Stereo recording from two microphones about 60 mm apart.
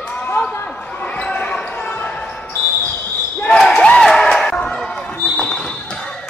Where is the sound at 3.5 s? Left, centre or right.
Centre.